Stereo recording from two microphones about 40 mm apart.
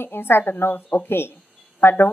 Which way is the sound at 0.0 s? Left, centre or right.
Left.